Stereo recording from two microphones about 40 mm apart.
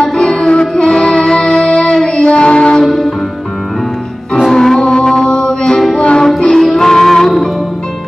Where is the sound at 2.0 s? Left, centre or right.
Left.